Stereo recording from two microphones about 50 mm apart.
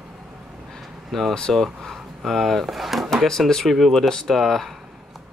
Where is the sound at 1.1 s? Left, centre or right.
Centre.